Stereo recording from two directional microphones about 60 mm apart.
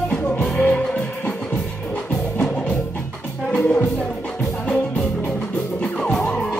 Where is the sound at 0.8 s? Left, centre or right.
Centre.